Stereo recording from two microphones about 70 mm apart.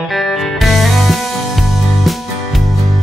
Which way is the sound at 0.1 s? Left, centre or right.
Centre.